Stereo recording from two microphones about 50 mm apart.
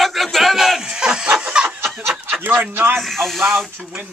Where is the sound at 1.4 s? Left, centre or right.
Centre.